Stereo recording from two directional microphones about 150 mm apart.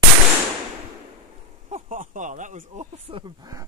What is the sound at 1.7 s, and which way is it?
Speech, 60° right (ahead or behind).